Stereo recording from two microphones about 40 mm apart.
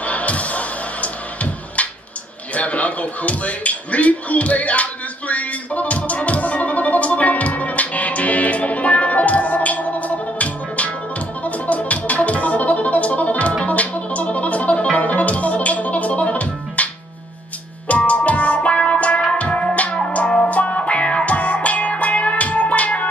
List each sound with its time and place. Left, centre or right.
0.0 s music: left
2.5 s speech: left
5.3 s music: left